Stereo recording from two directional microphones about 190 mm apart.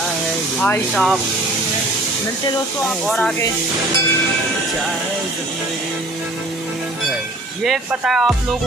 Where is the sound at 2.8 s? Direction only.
5° left (ahead or behind).